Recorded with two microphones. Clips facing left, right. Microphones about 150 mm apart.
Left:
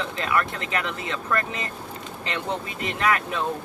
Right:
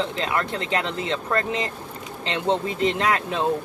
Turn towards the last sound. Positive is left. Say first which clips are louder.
# right 1 dB
turn(degrees=-30)  # may be behind; listen again after turning